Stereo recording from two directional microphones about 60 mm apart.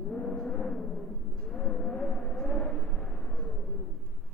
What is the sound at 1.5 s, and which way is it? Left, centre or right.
Vehicle, centre.